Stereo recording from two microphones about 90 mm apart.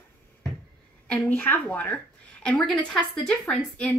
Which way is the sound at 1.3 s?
20° left (ahead or behind).